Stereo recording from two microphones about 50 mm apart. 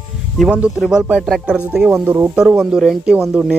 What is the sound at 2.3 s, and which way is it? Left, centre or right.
Speech, centre.